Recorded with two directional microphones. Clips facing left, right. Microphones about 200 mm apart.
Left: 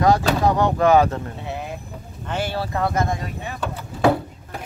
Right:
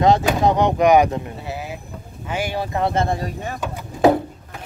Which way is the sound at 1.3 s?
5° right (ahead or behind).